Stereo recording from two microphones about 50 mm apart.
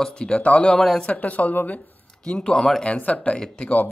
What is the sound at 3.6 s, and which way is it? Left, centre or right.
Speech, left.